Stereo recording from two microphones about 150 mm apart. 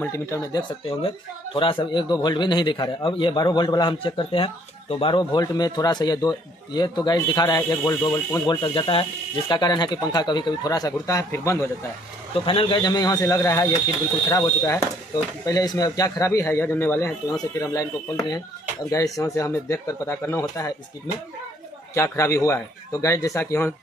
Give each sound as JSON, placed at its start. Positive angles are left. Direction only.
{"t": 0.0, "sound": "speech", "side_deg": 20}
{"t": 12.4, "sound": "speech", "side_deg": 35}
{"t": 21.9, "sound": "speech", "side_deg": 20}